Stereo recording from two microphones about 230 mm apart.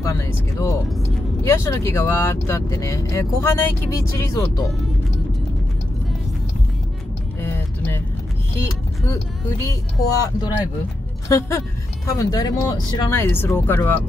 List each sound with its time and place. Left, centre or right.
0.0 s speech: centre
7.4 s music: centre
8.5 s speech: centre